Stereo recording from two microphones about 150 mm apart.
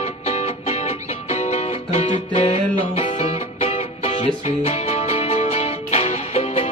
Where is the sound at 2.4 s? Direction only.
35° left (ahead or behind).